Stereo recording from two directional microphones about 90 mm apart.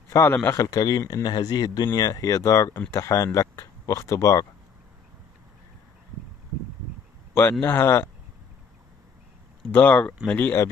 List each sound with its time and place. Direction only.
0.1 s a man's voice: 35° left (ahead or behind)
7.6 s speech: 25° left (ahead or behind)
9.7 s speech: 20° left (ahead or behind)